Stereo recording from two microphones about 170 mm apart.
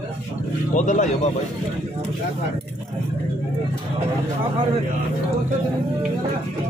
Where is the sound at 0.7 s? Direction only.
45° left (ahead or behind).